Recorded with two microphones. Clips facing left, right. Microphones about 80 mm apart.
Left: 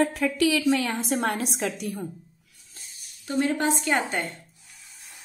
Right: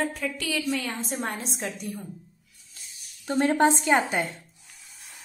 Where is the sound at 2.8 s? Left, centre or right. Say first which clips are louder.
Left 1 dB; left.